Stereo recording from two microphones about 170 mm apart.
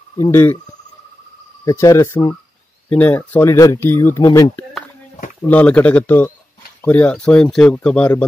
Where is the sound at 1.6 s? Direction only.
20° left (ahead or behind).